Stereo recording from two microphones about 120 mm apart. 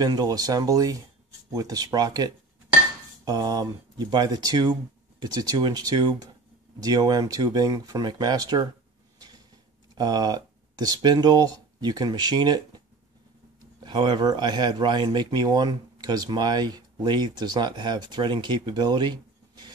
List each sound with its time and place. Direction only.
0.0 s speech: 35° right (ahead or behind)
9.2 s a sound: 35° right (ahead or behind)
9.9 s speech: 35° right (ahead or behind)